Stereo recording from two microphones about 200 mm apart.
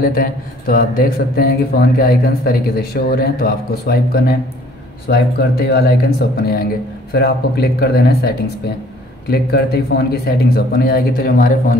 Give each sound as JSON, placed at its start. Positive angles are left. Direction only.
{"t": 0.0, "sound": "speech", "side_deg": 45}